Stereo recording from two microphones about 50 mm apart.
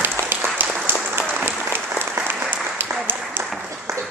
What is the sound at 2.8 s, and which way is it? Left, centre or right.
Applause, right.